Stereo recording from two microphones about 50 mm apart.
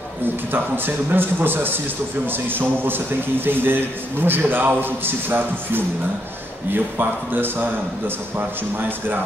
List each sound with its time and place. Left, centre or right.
0.5 s a man's voice: right